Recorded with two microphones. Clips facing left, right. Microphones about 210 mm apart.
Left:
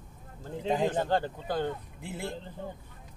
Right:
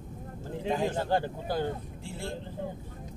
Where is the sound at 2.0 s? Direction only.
20° left (ahead or behind).